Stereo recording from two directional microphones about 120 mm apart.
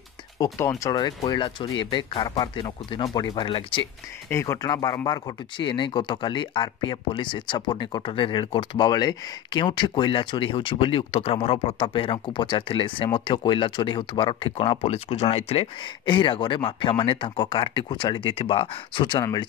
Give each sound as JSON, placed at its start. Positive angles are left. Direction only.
{"t": 0.4, "sound": "speech", "side_deg": 25}
{"t": 1.2, "sound": "speech", "side_deg": 45}
{"t": 3.4, "sound": "speech", "side_deg": 45}
{"t": 4.3, "sound": "speech", "side_deg": 25}